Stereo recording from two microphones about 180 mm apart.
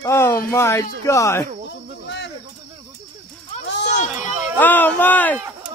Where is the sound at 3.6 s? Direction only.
75° left (ahead or behind).